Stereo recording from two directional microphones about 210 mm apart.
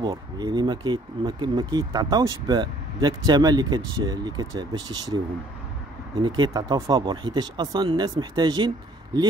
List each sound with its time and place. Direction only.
0.0 s speech: 20° right (ahead or behind)
6.2 s speech: 20° right (ahead or behind)